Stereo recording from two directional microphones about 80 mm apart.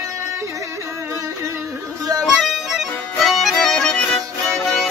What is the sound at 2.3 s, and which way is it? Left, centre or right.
Music, centre.